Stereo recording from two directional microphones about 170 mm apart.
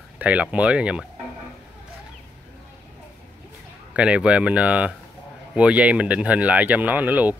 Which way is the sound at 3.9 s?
5° right (ahead or behind).